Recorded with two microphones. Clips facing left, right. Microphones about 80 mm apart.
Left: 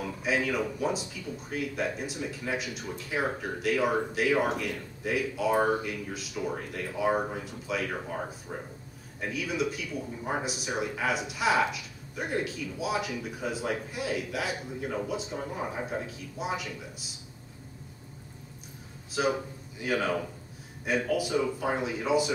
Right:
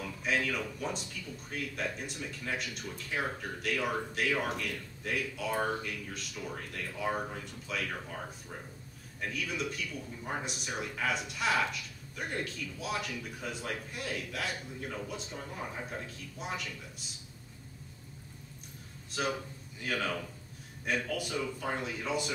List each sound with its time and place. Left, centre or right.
0.2 s speech: centre
7.9 s speech: centre
9.2 s speech: centre
19.2 s speech: centre